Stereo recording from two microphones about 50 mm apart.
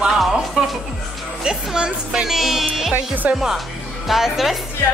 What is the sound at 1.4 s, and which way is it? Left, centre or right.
Speech, centre.